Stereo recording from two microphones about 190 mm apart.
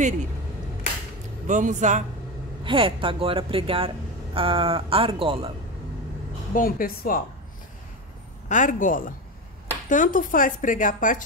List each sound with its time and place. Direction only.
1.5 s a man's voice: 40° right (ahead or behind)
2.6 s speech: 25° right (ahead or behind)
6.5 s speech: 50° left (ahead or behind)
8.5 s speech: 40° left (ahead or behind)